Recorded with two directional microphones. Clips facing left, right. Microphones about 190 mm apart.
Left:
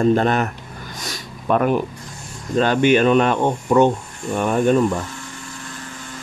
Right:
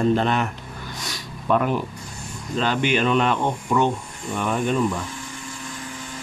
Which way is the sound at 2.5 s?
50° left (ahead or behind).